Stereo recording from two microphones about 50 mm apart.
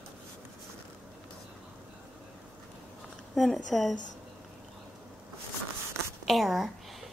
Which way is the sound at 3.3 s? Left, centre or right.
Centre.